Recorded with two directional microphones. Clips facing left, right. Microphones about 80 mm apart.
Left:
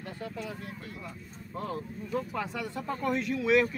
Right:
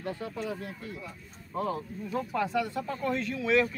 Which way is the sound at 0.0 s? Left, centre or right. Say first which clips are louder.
Right 4 dB; right.